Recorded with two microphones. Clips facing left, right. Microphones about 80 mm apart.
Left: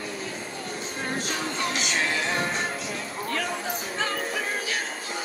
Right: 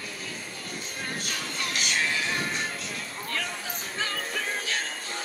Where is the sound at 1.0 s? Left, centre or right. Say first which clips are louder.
Left 6 dB; centre.